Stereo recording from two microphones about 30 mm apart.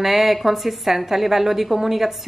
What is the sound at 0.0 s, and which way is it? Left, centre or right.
A woman's voice, centre.